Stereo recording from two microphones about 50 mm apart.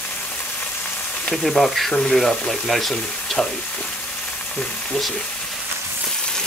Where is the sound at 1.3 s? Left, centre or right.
Centre.